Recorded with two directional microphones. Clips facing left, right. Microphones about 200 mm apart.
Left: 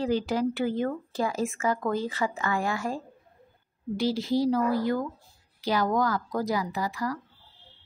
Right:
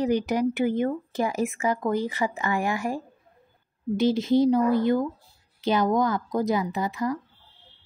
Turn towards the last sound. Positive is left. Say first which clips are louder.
# right 3 dB
turn(degrees=-20)  # may be behind; listen again after turning